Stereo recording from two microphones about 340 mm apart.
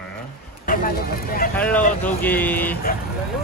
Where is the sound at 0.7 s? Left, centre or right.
Left.